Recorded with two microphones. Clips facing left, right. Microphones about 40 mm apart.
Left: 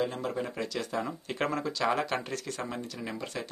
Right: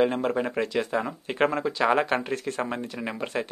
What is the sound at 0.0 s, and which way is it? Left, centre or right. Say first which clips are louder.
Speech: right 8 dB; right.